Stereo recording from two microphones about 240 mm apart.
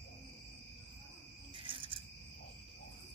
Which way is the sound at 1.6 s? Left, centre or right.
Right.